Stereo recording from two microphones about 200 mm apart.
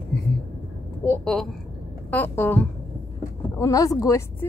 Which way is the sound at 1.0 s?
5° left (ahead or behind).